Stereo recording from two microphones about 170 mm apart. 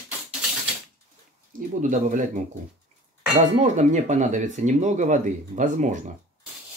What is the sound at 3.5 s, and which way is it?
Speech, 40° right (ahead or behind).